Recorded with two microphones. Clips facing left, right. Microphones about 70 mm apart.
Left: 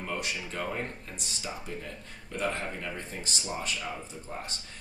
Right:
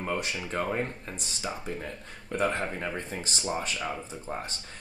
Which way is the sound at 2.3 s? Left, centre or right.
Right.